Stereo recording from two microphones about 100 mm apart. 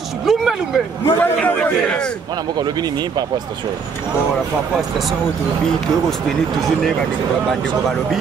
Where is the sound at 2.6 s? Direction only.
45° right (ahead or behind).